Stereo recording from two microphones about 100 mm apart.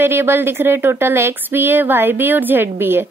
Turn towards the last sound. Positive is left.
turn(degrees=-20)  # may be behind; listen again after turning